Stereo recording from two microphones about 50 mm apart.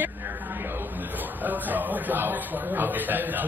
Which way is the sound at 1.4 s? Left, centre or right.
Right.